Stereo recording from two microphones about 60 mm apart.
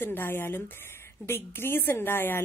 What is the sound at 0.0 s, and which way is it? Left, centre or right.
A woman's voice, left.